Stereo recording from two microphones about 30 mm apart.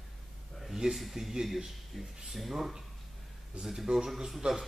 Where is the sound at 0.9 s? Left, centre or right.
Centre.